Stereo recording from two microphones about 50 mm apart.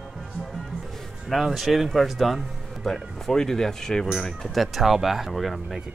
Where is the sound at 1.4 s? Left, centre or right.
Centre.